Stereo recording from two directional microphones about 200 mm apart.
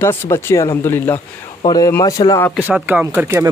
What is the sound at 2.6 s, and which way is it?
Speech, 10° right (ahead or behind).